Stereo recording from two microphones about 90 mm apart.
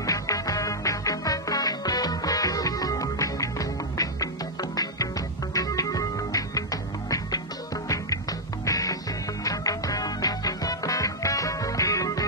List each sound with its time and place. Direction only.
0.0 s music: 40° left (ahead or behind)